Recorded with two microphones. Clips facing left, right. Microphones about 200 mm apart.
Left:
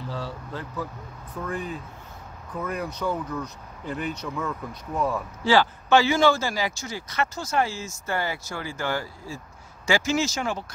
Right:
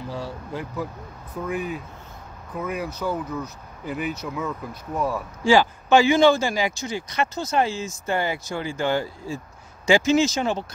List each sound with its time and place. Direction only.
0.1 s speech: 10° right (ahead or behind)